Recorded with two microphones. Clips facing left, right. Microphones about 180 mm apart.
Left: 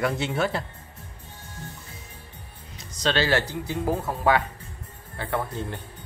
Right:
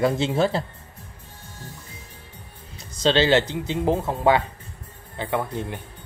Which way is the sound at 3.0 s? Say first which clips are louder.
Right 5 dB; 25° right (ahead or behind).